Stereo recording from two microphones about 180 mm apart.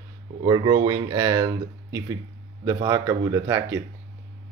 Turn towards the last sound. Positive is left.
turn(degrees=-15)  # may be behind; listen again after turning